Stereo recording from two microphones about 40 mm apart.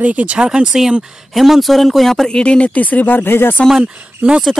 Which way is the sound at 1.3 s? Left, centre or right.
Centre.